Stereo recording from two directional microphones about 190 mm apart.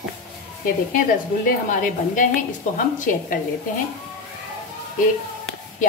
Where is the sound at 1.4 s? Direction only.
45° left (ahead or behind).